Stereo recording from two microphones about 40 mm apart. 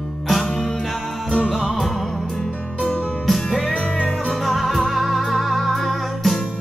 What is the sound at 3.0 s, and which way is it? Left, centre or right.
Music, right.